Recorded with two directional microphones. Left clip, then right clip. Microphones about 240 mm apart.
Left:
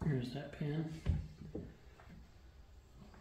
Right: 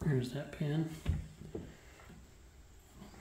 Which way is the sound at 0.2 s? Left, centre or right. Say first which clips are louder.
Right 4 dB; right.